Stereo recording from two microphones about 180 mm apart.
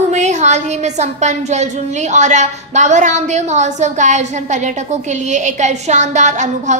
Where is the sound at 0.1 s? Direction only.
40° right (ahead or behind).